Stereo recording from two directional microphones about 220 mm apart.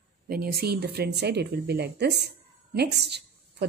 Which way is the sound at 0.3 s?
45° right (ahead or behind).